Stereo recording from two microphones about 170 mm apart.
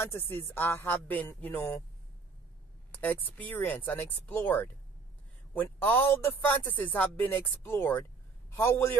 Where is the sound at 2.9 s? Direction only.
10° left (ahead or behind).